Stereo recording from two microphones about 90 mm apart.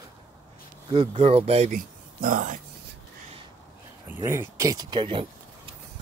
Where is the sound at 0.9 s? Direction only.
90° right.